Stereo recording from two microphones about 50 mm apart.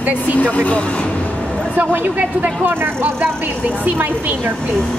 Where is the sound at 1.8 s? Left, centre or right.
Right.